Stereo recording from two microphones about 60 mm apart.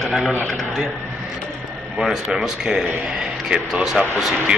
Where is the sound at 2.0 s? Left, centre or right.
Centre.